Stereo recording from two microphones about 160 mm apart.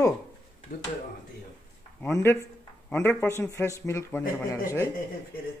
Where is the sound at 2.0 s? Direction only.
15° left (ahead or behind).